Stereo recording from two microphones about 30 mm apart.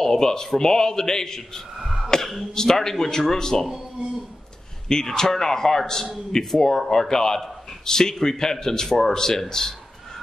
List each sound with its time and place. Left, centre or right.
0.0 s a man's voice: centre
1.8 s throat clearing: centre
2.5 s a man's voice: centre
4.8 s a man's voice: centre